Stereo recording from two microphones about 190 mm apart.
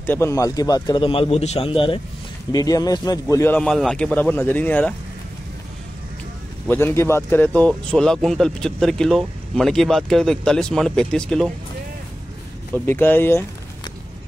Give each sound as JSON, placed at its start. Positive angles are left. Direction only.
{"t": 0.0, "sound": "a man's voice", "side_deg": 10}
{"t": 6.7, "sound": "speech", "side_deg": 10}
{"t": 12.7, "sound": "speech", "side_deg": 10}